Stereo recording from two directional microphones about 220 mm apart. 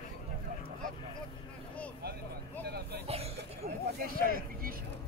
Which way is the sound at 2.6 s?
50° right (ahead or behind).